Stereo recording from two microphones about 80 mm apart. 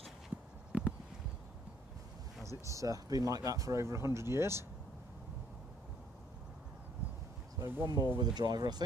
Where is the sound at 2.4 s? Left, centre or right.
Right.